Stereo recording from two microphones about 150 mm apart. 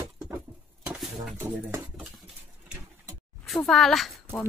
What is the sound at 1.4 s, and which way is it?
Speech, 15° right (ahead or behind).